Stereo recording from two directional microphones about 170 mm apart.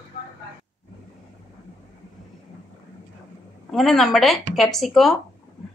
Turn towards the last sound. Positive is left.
turn(degrees=0)  # may be behind; listen again after turning